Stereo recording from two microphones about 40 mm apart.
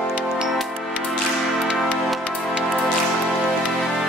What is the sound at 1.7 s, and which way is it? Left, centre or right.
Music, centre.